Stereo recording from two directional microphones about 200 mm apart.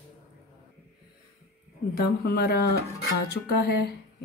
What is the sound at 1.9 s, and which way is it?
Speech, 50° left (ahead or behind).